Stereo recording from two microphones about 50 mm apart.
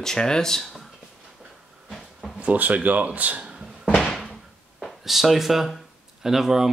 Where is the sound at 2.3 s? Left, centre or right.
Right.